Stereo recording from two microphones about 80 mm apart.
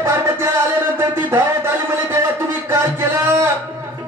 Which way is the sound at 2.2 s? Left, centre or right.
Right.